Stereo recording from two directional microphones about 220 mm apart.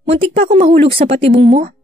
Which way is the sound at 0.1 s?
25° right (ahead or behind).